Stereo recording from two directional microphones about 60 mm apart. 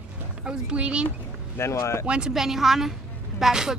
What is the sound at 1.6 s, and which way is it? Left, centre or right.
Speech, left.